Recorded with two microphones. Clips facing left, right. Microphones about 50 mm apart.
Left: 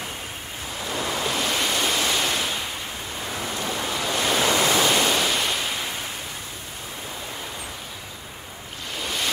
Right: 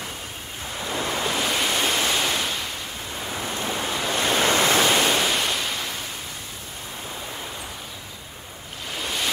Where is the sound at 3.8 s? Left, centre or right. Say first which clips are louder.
Even; centre.